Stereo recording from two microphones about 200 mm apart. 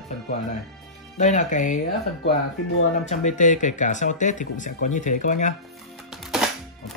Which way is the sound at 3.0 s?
35° left (ahead or behind).